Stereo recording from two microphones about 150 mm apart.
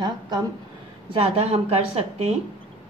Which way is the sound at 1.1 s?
45° right (ahead or behind).